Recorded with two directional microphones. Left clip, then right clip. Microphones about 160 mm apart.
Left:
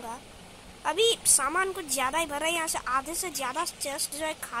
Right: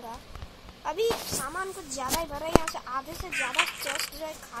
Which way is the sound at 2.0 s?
20° left (ahead or behind).